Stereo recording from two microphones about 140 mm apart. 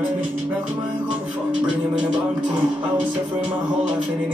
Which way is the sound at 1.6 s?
5° right (ahead or behind).